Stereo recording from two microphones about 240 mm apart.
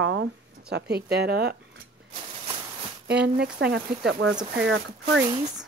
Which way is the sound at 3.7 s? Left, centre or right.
Right.